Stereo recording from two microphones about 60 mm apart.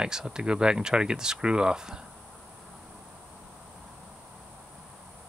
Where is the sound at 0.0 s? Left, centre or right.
Centre.